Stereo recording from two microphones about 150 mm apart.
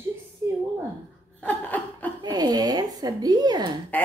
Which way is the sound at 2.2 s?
25° right (ahead or behind).